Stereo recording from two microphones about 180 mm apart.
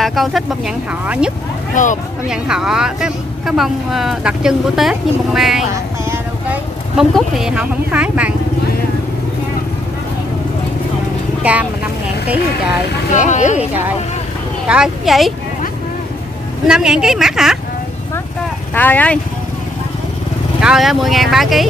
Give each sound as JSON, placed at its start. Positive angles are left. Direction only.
{"t": 0.0, "sound": "a sound", "side_deg": 0}
{"t": 1.0, "sound": "speech", "side_deg": -5}
{"t": 5.7, "sound": "vehicle", "side_deg": -15}
{"t": 7.0, "sound": "speech", "side_deg": 0}
{"t": 11.4, "sound": "vehicle", "side_deg": -10}
{"t": 13.1, "sound": "speech", "side_deg": 40}
{"t": 13.6, "sound": "speech", "side_deg": -10}
{"t": 16.6, "sound": "speech", "side_deg": -5}
{"t": 18.8, "sound": "speech", "side_deg": 10}
{"t": 20.6, "sound": "speech", "side_deg": 0}